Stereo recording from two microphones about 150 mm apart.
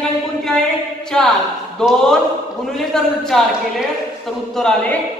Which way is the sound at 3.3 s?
5° left (ahead or behind).